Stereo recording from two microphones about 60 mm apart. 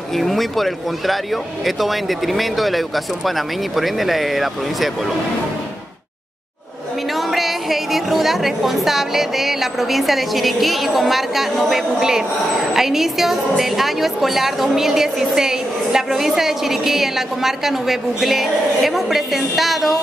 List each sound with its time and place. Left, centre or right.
0.2 s a woman's voice: centre
7.3 s a woman's voice: centre